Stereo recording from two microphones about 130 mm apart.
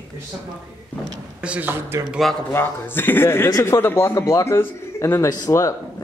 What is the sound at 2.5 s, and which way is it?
A man's voice, 15° left (ahead or behind).